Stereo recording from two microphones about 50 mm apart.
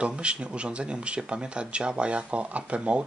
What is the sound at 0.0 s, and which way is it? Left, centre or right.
Speech, right.